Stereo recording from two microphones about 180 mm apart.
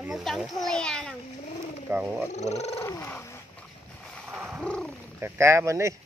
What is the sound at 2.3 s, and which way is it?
Speech, 40° left (ahead or behind).